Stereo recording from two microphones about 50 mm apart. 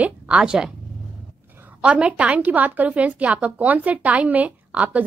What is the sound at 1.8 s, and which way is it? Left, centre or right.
A woman's voice, right.